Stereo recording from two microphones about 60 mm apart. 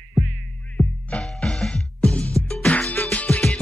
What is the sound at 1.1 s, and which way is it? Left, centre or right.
Music, centre.